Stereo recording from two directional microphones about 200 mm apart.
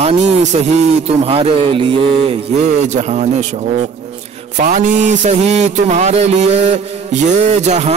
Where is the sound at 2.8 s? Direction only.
35° right (ahead or behind).